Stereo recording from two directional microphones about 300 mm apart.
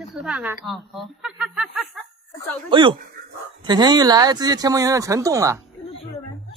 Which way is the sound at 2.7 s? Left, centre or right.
Centre.